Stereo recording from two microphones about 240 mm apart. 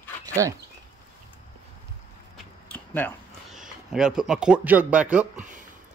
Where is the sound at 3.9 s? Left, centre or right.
Centre.